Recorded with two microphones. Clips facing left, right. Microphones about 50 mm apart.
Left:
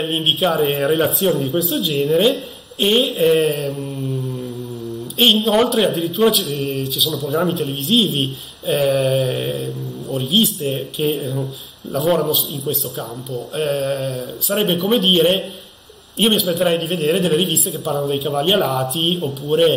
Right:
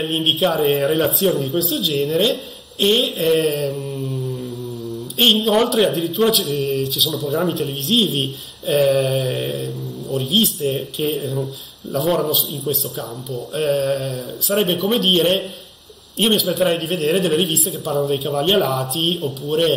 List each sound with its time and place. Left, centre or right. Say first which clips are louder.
0.0 s a man's voice: even; centre
1.8 s a man's voice: left 3 dB; centre
5.2 s a man's voice: left 1 dB; centre